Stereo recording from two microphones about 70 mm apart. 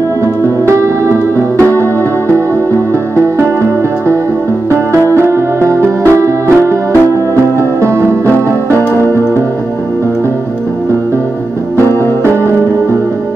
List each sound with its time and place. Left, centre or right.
0.7 s music: right
5.1 s music: right
8.6 s music: right